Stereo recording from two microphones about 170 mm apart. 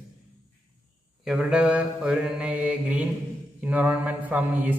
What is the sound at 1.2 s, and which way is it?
A man's voice, 5° right (ahead or behind).